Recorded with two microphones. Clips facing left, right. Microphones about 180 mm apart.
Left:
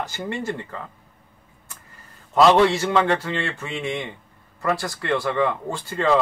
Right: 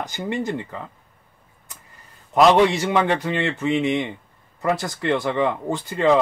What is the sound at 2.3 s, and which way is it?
Speech, 15° right (ahead or behind).